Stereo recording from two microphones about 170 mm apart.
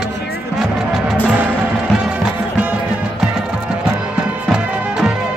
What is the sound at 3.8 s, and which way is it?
Music, 5° right (ahead or behind).